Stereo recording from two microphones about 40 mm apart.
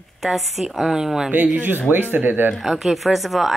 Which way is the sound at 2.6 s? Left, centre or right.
Centre.